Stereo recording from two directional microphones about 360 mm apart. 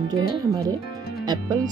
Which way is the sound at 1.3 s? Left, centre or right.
Centre.